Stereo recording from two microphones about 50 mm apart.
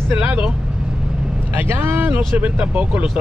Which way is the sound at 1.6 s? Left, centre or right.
Right.